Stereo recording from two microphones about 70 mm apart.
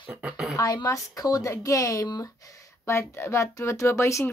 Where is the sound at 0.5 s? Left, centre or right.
Left.